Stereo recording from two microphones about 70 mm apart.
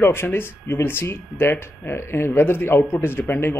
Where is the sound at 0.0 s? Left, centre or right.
Left.